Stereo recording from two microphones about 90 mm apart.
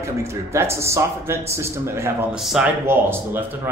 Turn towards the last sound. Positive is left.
turn(degrees=-25)  # may be behind; listen again after turning